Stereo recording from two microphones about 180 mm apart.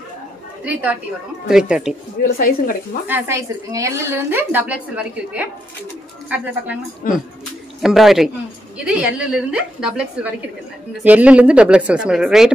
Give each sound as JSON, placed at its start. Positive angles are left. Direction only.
{"t": 0.7, "sound": "a woman's voice", "side_deg": -10}
{"t": 2.3, "sound": "a woman's voice", "side_deg": 50}
{"t": 3.1, "sound": "a woman's voice", "side_deg": -15}
{"t": 7.0, "sound": "a woman's voice", "side_deg": 50}
{"t": 7.8, "sound": "a woman's voice", "side_deg": 0}